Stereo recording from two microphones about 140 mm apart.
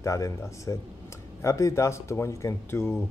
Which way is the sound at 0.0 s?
20° left (ahead or behind).